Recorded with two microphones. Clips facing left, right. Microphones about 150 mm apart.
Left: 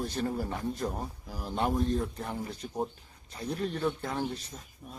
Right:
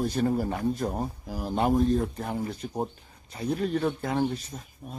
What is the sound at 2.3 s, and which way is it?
Speech, 25° right (ahead or behind).